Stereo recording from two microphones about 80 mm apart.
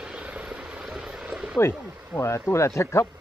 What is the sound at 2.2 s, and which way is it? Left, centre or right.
Speech, left.